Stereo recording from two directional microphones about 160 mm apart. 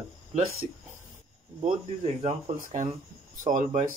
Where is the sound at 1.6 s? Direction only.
40° right (ahead or behind).